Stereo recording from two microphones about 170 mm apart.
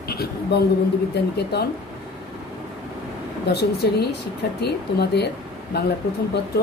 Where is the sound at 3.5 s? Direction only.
70° left (ahead or behind).